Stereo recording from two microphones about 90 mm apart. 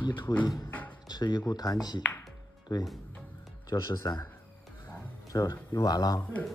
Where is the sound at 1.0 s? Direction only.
50° left (ahead or behind).